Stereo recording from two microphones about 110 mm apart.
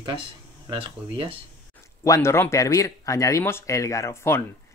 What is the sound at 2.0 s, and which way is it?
Speech, 25° left (ahead or behind).